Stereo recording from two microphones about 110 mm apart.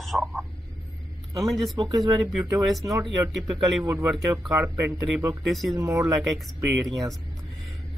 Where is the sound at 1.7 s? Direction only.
35° right (ahead or behind).